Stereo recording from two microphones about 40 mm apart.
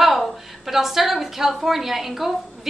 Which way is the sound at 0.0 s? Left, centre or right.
Centre.